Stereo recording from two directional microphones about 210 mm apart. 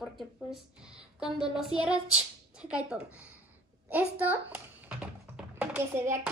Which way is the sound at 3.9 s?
5° right (ahead or behind).